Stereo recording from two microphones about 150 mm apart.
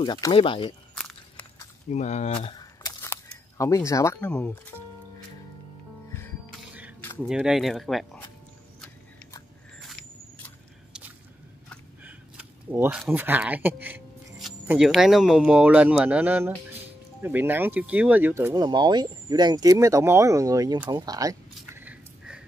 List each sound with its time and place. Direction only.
0.0 s speech: 30° left (ahead or behind)
0.9 s walk: 5° left (ahead or behind)
1.9 s speech: 50° left (ahead or behind)
2.3 s a sound: 30° left (ahead or behind)
4.2 s speech: 5° left (ahead or behind)
6.7 s music: 10° right (ahead or behind)
7.2 s speech: 5° right (ahead or behind)
12.0 s a sound: 10° right (ahead or behind)
13.1 s speech: 10° right (ahead or behind)
18.5 s speech: 30° right (ahead or behind)
21.7 s a sound: 10° right (ahead or behind)